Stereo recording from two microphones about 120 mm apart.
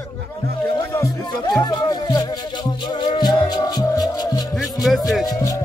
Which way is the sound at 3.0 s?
40° left (ahead or behind).